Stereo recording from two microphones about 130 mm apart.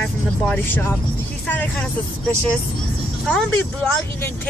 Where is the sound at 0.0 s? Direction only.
10° left (ahead or behind).